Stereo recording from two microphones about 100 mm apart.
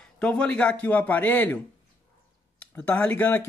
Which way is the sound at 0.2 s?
10° left (ahead or behind).